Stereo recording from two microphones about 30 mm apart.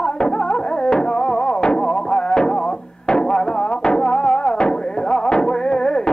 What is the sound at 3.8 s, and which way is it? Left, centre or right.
Music, left.